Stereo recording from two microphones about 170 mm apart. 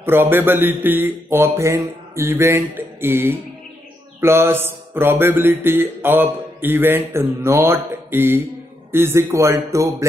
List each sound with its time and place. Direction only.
0.0 s mantra: 10° right (ahead or behind)